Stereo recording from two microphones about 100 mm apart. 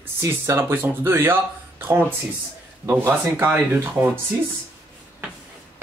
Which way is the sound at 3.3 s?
20° right (ahead or behind).